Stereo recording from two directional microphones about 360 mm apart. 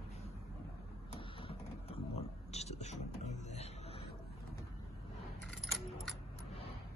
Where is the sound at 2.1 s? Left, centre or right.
Centre.